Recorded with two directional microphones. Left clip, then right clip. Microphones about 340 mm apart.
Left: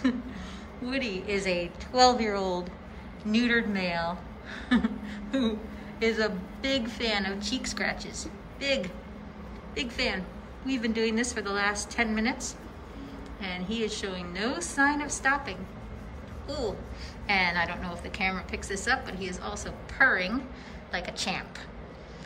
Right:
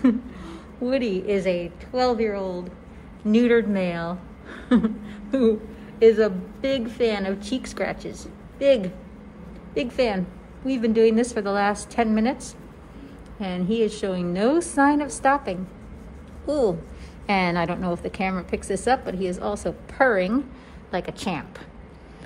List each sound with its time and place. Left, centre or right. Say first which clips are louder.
0.0 s a woman's voice: right 7 dB; centre